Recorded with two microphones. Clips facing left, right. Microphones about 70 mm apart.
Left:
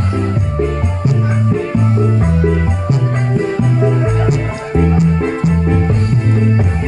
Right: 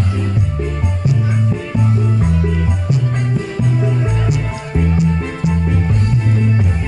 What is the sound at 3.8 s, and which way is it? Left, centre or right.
Music, left.